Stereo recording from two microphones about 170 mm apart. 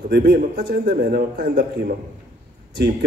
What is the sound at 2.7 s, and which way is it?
Speech, 75° right (ahead or behind).